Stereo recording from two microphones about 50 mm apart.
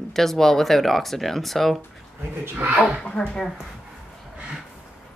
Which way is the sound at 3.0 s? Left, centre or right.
Left.